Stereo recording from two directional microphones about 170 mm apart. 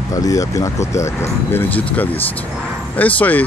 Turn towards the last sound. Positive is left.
turn(degrees=10)  # may be behind; listen again after turning